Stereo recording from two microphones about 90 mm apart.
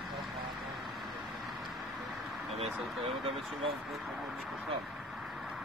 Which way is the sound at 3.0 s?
90° right.